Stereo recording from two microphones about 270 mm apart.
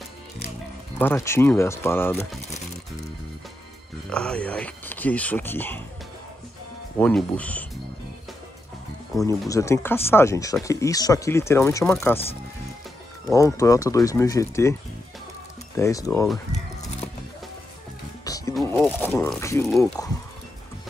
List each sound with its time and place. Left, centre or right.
0.9 s speech: centre
4.1 s speech: centre
7.0 s speech: centre
9.5 s speech: centre
13.3 s speech: centre
18.2 s music: centre
18.5 s wild animals: centre
19.8 s speech: centre